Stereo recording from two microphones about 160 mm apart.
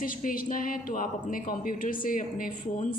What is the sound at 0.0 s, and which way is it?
A woman's voice, 60° left (ahead or behind).